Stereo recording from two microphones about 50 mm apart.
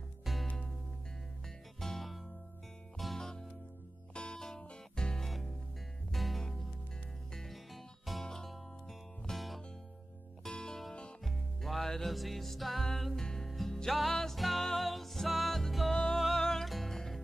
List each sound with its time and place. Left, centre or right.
0.2 s music: centre
1.8 s music: centre
8.3 s music: centre
9.3 s music: centre
10.4 s music: centre
11.2 s music: centre